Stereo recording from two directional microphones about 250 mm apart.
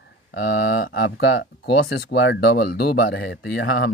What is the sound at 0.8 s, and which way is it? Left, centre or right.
Speech, left.